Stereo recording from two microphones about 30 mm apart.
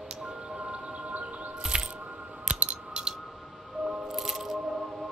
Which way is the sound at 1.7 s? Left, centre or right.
Right.